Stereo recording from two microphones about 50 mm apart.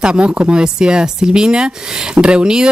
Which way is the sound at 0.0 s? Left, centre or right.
Centre.